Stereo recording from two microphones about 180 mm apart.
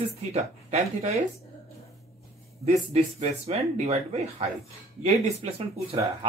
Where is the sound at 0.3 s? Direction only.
40° right (ahead or behind).